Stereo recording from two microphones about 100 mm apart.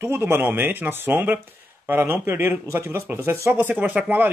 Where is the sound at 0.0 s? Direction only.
20° right (ahead or behind).